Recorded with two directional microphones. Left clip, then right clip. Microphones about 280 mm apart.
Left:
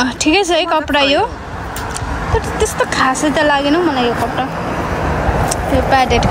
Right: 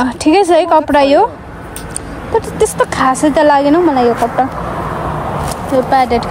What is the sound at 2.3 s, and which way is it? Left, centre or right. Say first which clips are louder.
Speech: right 4 dB; centre.